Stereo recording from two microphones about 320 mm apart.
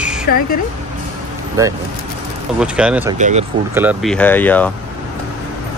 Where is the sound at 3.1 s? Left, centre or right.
Right.